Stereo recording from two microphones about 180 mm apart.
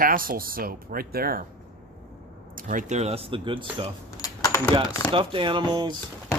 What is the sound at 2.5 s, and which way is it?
Speech, 45° right (ahead or behind).